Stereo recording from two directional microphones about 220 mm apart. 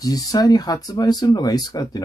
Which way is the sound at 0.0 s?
15° left (ahead or behind).